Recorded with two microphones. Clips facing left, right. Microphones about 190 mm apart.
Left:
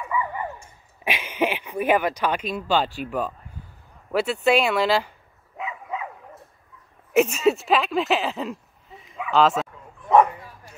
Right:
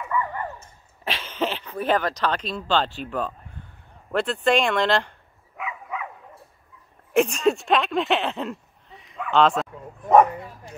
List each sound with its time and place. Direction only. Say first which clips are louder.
0.1 s dog: even; 10° left (ahead or behind)
4.1 s speech: left 1 dB; 5° left (ahead or behind)
5.6 s dog: left 1 dB; 25° left (ahead or behind)
7.2 s speech: left 1 dB; 5° left (ahead or behind)